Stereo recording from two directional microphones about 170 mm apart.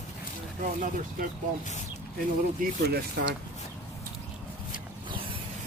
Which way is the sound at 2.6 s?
65° right (ahead or behind).